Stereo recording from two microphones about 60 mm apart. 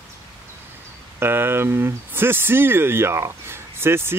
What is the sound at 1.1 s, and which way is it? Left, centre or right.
Speech, right.